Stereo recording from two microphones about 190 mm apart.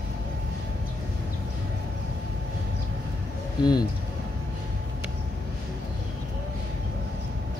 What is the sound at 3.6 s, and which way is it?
Speech, 20° left (ahead or behind).